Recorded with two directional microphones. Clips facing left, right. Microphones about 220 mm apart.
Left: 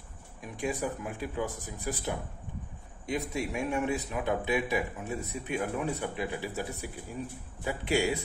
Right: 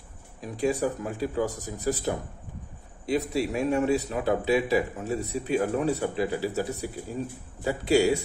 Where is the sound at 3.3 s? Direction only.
35° right (ahead or behind).